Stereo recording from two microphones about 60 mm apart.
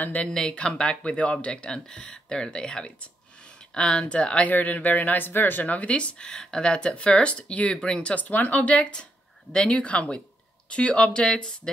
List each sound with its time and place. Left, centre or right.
0.0 s speech: left
0.3 s speech: centre
4.5 s speech: left